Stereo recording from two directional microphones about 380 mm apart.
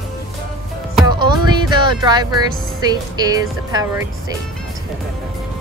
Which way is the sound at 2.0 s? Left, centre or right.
Centre.